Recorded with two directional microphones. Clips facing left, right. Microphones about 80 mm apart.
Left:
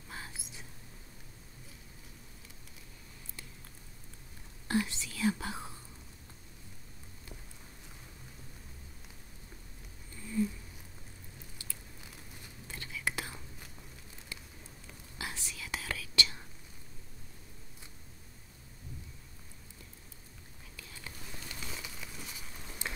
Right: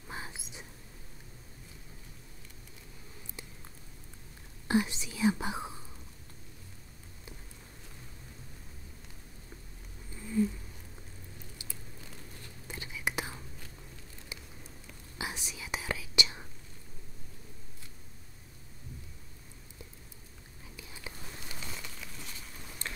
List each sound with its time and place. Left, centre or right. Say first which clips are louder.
0.1 s whispering: right 3 dB; right
4.6 s speech: right 3 dB; centre
10.1 s cat: right 3 dB; centre
11.5 s biting: right 2 dB; centre
12.6 s whispering: right 1 dB; centre
15.1 s whispering: right 3 dB; centre
20.7 s whispering: right 2 dB; centre
21.5 s a sound: left 1 dB; centre